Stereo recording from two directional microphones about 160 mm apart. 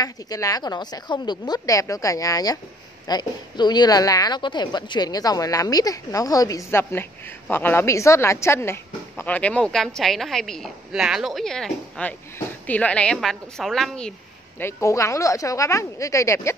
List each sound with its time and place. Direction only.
0.0 s a woman's voice: 20° left (ahead or behind); by 14.1 s 5° left (ahead or behind)
14.6 s a woman's voice: 15° left (ahead or behind)